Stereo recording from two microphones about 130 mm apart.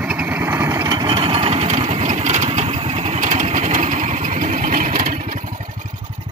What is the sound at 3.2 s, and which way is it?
Vehicle, 70° right (ahead or behind).